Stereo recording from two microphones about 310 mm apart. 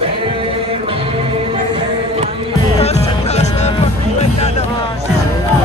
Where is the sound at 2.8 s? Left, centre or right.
Left.